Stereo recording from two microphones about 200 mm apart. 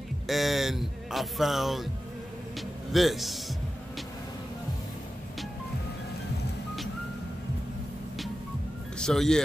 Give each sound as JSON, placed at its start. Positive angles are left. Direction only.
{"t": 0.3, "sound": "speech", "side_deg": 0}
{"t": 2.9, "sound": "a man's voice", "side_deg": 0}
{"t": 8.9, "sound": "speech", "side_deg": 0}